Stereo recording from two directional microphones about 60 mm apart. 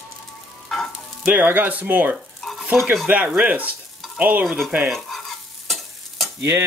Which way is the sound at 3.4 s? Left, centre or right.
Right.